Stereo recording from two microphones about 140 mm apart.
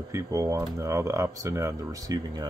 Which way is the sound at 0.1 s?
20° right (ahead or behind).